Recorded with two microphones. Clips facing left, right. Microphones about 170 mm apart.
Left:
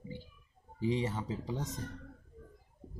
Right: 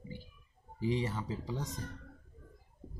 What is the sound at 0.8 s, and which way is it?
Speech, 20° left (ahead or behind).